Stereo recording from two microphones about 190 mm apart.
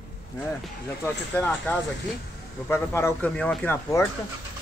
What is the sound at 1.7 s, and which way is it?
Speech, 10° left (ahead or behind).